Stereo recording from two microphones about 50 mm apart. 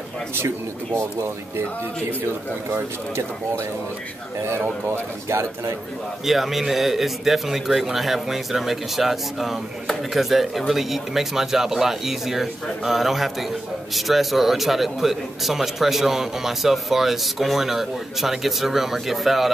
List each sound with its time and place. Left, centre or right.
4.4 s speech: right
6.2 s a man's voice: centre